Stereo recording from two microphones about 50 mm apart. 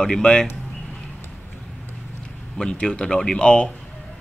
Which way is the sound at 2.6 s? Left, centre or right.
Centre.